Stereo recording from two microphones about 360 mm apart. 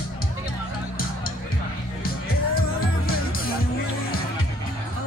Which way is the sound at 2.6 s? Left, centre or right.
Left.